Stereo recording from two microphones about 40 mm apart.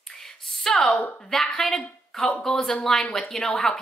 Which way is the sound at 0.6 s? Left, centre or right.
Centre.